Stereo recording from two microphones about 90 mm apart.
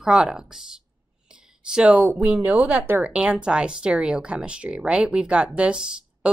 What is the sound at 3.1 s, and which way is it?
Speech, 10° right (ahead or behind).